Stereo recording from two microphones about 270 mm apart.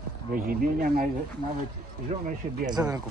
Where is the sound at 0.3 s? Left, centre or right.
Right.